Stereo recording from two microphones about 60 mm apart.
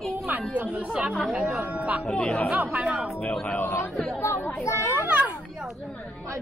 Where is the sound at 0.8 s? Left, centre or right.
Centre.